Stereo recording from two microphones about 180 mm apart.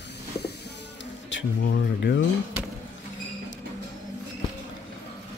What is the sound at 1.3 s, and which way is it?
Speech, 80° left.